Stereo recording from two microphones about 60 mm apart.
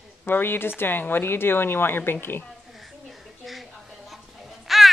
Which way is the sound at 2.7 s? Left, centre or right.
Centre.